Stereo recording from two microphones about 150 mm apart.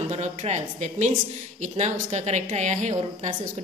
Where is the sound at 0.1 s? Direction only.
45° right (ahead or behind).